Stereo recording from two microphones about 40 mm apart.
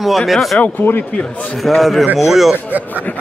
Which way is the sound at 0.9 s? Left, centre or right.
Left.